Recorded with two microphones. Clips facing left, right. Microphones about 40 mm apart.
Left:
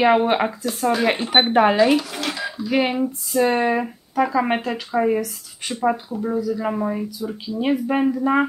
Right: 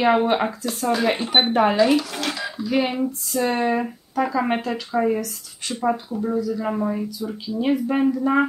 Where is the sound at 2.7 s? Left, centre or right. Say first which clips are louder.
Left 2 dB; centre.